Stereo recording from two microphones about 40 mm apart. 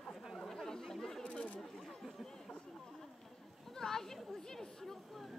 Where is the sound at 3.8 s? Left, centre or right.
Centre.